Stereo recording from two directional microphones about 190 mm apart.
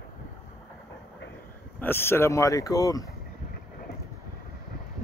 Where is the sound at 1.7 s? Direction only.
10° left (ahead or behind).